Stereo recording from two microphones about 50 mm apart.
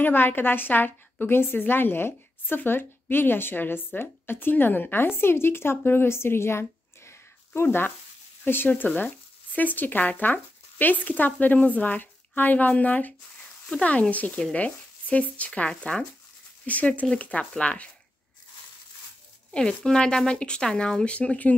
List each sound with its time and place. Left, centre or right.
0.0 s speech: left
7.6 s speech: left
8.8 s speech: left
16.6 s speech: left
19.5 s speech: centre